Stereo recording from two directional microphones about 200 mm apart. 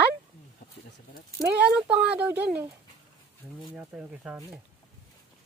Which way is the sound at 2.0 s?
5° right (ahead or behind).